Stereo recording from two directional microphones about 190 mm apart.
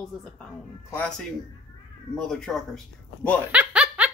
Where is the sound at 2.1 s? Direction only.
5° left (ahead or behind).